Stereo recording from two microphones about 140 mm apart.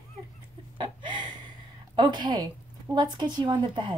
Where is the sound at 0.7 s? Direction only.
35° right (ahead or behind).